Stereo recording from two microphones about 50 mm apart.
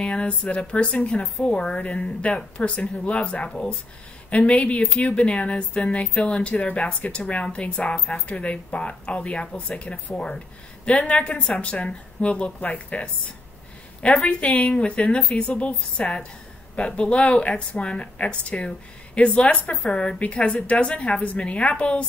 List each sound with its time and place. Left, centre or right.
0.0 s speech: left
12.5 s a woman's voice: left
14.0 s speech: left